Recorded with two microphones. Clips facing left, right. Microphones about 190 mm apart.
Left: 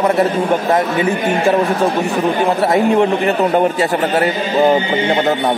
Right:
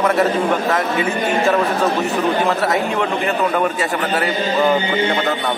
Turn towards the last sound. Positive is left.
turn(degrees=30)  # may be behind; listen again after turning